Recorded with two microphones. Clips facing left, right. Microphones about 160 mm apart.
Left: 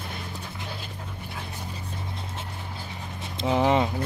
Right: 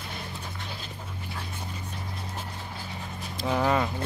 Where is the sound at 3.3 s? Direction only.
20° left (ahead or behind).